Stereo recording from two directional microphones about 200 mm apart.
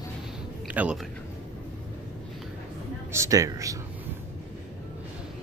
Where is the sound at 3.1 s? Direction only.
15° right (ahead or behind).